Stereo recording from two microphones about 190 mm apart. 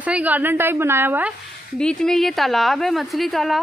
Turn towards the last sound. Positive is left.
turn(degrees=0)  # may be behind; listen again after turning